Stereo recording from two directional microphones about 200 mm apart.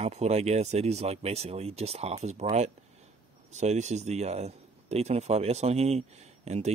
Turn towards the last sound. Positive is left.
turn(degrees=-35)  # may be behind; listen again after turning